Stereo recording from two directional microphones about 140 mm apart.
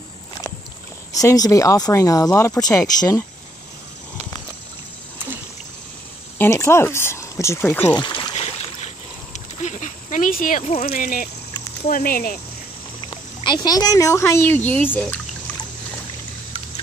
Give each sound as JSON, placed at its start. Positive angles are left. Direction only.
{"t": 1.1, "sound": "speech", "side_deg": 25}
{"t": 6.3, "sound": "speech", "side_deg": 15}
{"t": 8.0, "sound": "speech", "side_deg": 35}
{"t": 8.4, "sound": "splash", "side_deg": 50}
{"t": 10.8, "sound": "speech", "side_deg": 75}
{"t": 11.9, "sound": "speech", "side_deg": 90}
{"t": 13.4, "sound": "speech", "side_deg": 30}